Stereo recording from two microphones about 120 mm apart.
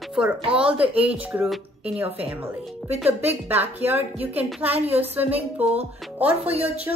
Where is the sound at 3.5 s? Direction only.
15° right (ahead or behind).